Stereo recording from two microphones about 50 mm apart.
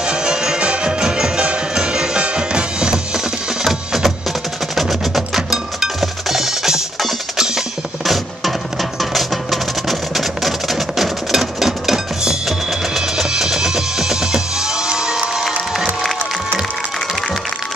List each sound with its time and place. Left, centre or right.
0.0 s music: centre
3.6 s music: centre
4.7 s percussion: centre
9.1 s music: centre